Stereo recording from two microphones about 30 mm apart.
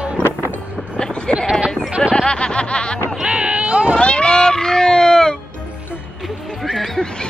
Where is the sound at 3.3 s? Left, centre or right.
Right.